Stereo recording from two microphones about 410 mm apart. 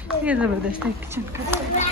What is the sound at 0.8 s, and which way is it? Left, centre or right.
Speech, centre.